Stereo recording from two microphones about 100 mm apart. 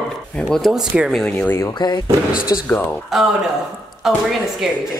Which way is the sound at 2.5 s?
40° left (ahead or behind).